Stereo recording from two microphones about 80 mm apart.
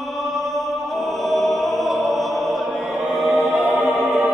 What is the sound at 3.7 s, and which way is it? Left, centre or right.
Music, centre.